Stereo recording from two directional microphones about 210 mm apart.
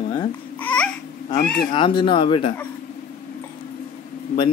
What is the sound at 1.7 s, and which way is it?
Speech, 25° left (ahead or behind).